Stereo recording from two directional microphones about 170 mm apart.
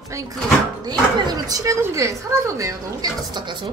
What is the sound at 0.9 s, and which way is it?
Speech, 25° right (ahead or behind).